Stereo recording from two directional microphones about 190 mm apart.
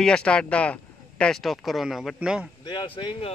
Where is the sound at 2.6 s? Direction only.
25° left (ahead or behind).